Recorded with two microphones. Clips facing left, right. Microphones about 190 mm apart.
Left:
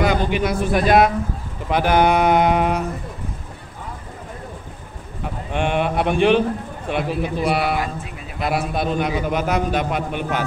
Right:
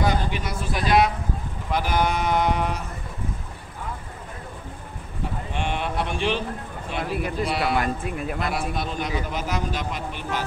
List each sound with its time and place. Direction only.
0.0 s a man's voice: 75° left (ahead or behind); by 1.1 s 55° left (ahead or behind)
1.7 s a man's voice: 65° left (ahead or behind)
5.5 s a man's voice: 60° left (ahead or behind)
7.7 s speech: 55° right (ahead or behind)
8.5 s a man's voice: 60° left (ahead or behind)